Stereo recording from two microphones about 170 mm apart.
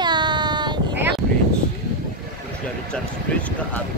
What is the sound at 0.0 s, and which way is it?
Child singing, 25° right (ahead or behind).